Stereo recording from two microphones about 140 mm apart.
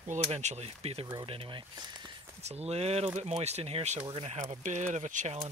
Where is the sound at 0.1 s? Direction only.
55° right (ahead or behind).